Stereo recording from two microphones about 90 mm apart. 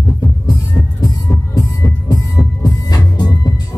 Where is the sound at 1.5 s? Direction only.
40° left (ahead or behind).